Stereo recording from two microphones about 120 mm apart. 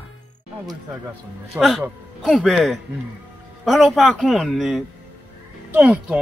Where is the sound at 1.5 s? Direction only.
20° right (ahead or behind).